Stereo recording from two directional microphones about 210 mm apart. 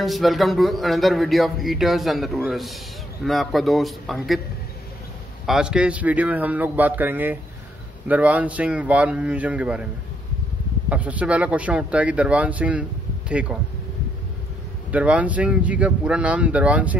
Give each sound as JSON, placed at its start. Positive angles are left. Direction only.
{"t": 0.0, "sound": "speech", "side_deg": 0}
{"t": 5.5, "sound": "speech", "side_deg": -5}
{"t": 10.9, "sound": "speech", "side_deg": -5}
{"t": 14.9, "sound": "speech", "side_deg": -5}